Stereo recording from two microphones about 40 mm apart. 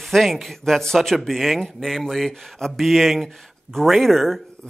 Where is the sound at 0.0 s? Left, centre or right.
Centre.